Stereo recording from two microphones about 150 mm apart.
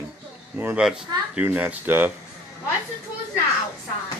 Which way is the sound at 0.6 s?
10° right (ahead or behind).